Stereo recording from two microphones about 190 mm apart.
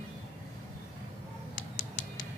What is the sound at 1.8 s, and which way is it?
Music, 45° left (ahead or behind).